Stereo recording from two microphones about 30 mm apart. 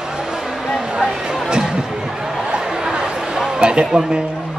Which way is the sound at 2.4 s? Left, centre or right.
Right.